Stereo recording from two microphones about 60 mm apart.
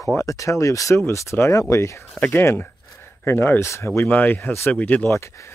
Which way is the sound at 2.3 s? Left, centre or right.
Left.